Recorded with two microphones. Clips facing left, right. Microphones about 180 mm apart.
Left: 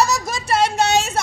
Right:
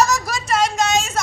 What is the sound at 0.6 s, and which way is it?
Speech, 60° left (ahead or behind).